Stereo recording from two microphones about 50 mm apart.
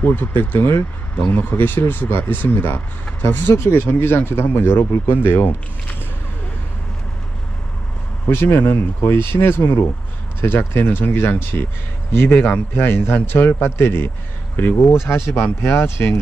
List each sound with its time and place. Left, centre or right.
0.0 s speech: left
1.1 s speech: left
8.3 s speech: left